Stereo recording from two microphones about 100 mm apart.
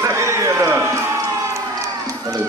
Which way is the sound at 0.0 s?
30° right (ahead or behind).